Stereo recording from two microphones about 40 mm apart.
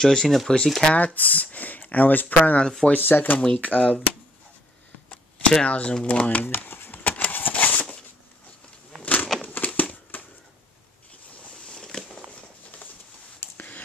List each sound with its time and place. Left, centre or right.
0.0 s speech: centre
0.9 s speech: left
2.6 s speech: centre
2.9 s speech: left
3.4 s speech: left
5.6 s speech: left
6.4 s speech: left
7.0 s a sound: left
9.0 s a sound: left
11.6 s a sound: centre
13.6 s whispering: left